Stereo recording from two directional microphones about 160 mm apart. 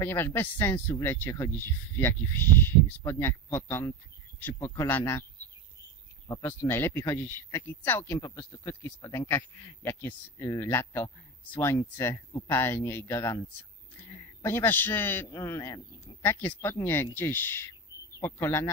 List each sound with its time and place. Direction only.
0.0 s a man's voice: 15° left (ahead or behind)
6.4 s a man's voice: 15° left (ahead or behind)
14.4 s a man's voice: 15° left (ahead or behind)